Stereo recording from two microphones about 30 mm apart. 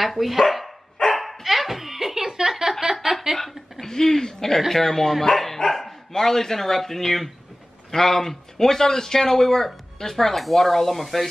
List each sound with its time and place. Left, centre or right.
0.0 s speech: centre
1.1 s dog: centre
2.8 s a sound: centre
3.8 s speech: centre